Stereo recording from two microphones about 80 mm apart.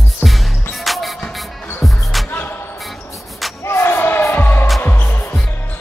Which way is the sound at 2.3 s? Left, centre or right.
Left.